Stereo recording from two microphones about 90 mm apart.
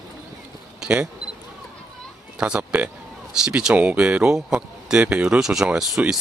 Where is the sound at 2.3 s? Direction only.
10° right (ahead or behind).